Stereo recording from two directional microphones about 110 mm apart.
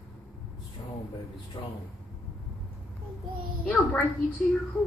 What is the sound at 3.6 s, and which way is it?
Speech, 10° left (ahead or behind).